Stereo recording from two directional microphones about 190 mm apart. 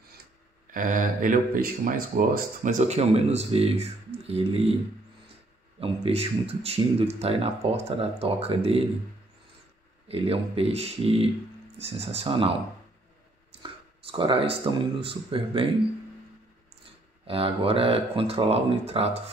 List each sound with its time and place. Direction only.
0.7 s speech: 45° right (ahead or behind)
5.8 s speech: 30° right (ahead or behind)
10.0 s speech: 30° right (ahead or behind)
17.3 s speech: 30° right (ahead or behind)